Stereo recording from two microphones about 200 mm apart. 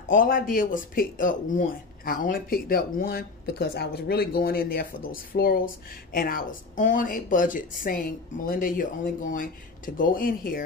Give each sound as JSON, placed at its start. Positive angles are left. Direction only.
{"t": 0.1, "sound": "speech", "side_deg": 45}